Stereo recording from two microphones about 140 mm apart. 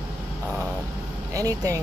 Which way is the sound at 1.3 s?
25° right (ahead or behind).